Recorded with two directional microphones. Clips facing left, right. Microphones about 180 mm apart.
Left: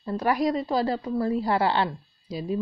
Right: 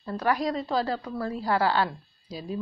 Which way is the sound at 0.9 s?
15° left (ahead or behind).